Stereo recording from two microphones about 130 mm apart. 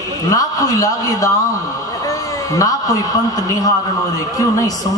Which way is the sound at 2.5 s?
25° left (ahead or behind).